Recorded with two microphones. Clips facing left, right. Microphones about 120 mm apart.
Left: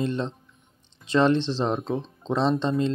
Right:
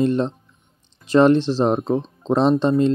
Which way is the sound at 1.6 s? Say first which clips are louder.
Right 7 dB; 55° right (ahead or behind).